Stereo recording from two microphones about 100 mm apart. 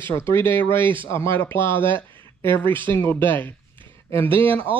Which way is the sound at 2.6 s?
55° right (ahead or behind).